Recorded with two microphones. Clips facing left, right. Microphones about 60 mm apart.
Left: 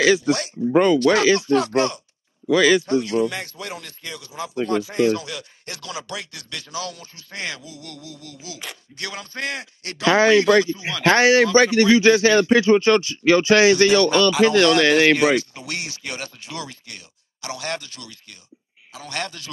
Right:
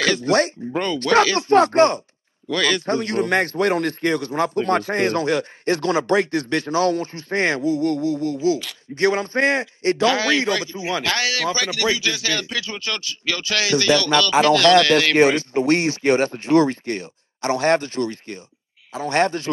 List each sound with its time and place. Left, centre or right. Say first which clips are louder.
0.2 s speech: right 5 dB; right
0.7 s a man's voice: left 8 dB; centre
1.5 s speech: right 5 dB; right
2.4 s a man's voice: left 5 dB; centre
2.9 s a man's voice: right 1 dB; right
10.0 s a man's voice: left 6 dB; left
15.1 s speech: right 3 dB; right